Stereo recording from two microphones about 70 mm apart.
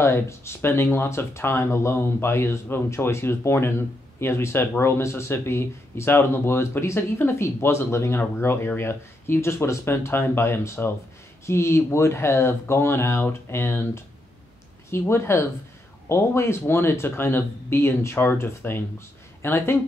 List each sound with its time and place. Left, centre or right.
0.0 s speech: left